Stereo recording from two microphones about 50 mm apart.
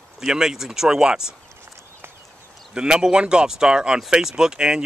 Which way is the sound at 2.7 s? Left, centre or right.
Centre.